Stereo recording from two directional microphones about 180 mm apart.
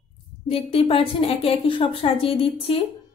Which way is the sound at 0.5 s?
30° left (ahead or behind).